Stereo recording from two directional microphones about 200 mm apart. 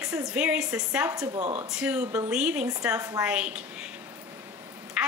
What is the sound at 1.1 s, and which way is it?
Speech, 15° right (ahead or behind).